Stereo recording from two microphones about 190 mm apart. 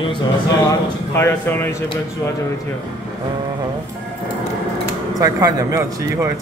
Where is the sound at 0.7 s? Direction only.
15° left (ahead or behind).